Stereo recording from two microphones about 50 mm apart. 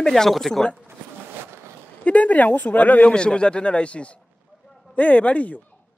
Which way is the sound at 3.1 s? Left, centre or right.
Centre.